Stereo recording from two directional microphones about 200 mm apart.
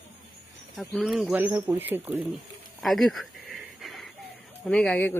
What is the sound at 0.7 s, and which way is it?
Speech, centre (ahead or behind).